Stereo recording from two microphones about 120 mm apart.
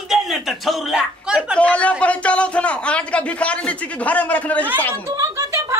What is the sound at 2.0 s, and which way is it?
A man's voice, 10° left (ahead or behind).